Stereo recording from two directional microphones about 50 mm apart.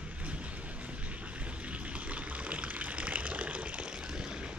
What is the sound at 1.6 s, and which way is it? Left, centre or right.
Water, right.